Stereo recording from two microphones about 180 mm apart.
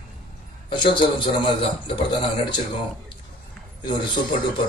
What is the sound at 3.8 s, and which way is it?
Speech, 25° left (ahead or behind).